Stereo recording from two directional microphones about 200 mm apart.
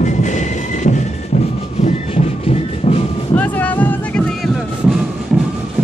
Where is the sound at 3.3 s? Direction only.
10° left (ahead or behind).